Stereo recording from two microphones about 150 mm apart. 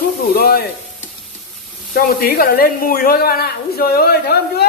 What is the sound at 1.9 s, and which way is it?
Speech, 80° left.